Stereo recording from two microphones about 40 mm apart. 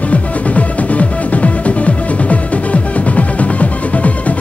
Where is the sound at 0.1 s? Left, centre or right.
Left.